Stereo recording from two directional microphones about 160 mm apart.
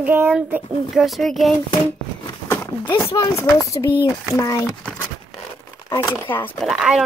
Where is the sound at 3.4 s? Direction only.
20° left (ahead or behind).